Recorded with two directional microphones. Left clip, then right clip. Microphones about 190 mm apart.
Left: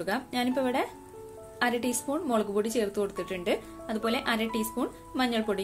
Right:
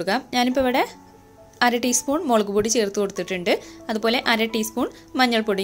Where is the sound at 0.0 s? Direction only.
30° right (ahead or behind).